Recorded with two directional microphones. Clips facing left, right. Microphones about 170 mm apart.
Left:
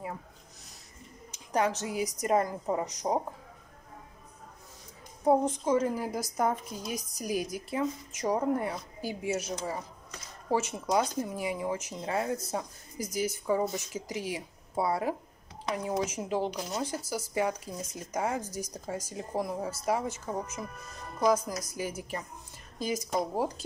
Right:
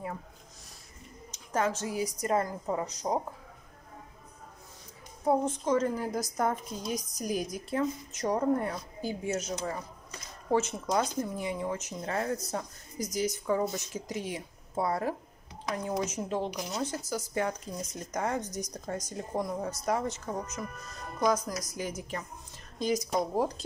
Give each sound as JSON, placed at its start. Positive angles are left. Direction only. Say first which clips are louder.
{"t": 1.3, "sound": "a sound", "louder": "left 2 dB", "side_deg": 15}
{"t": 1.8, "sound": "a woman's voice", "louder": "even", "side_deg": 20}
{"t": 5.2, "sound": "speech", "louder": "left 2 dB", "side_deg": 15}